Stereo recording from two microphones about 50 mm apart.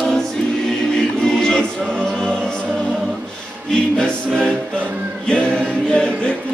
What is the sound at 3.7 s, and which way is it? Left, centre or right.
Music, centre.